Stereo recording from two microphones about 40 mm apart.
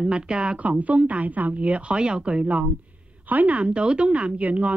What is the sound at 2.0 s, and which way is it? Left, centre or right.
Speech, right.